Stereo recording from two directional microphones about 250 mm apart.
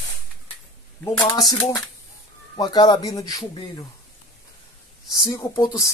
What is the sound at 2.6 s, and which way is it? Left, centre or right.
Speech, centre.